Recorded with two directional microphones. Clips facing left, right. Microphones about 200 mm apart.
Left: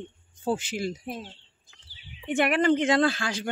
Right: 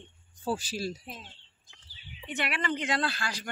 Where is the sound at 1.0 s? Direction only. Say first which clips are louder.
Left 10 dB; 55° left (ahead or behind).